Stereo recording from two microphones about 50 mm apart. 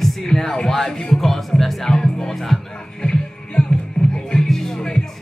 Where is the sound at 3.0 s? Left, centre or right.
Centre.